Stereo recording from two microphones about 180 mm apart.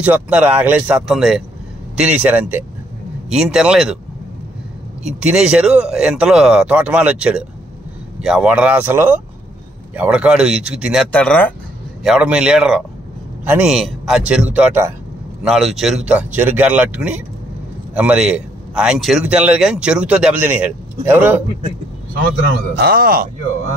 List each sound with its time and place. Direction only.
0.0 s a man's voice: 10° right (ahead or behind)
5.0 s a man's voice: 5° right (ahead or behind)
11.1 s speech: 10° left (ahead or behind)
12.0 s a man's voice: 5° right (ahead or behind)
22.8 s speech: 55° right (ahead or behind)